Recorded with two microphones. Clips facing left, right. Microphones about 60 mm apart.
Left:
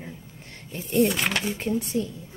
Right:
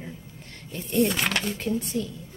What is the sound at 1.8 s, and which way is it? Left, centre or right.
Speech, left.